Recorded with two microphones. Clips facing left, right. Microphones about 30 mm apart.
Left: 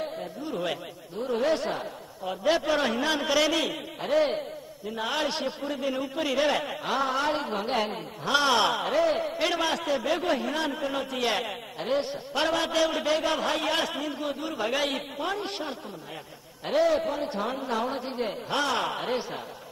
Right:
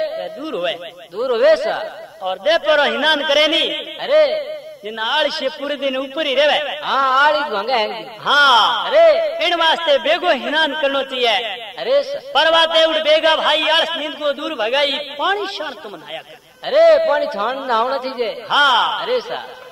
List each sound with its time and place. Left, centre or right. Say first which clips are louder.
0.0 s a man's voice: right 10 dB; right
2.2 s a man's voice: right 9 dB; right